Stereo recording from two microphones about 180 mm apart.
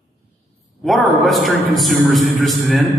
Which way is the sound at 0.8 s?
Centre (ahead or behind).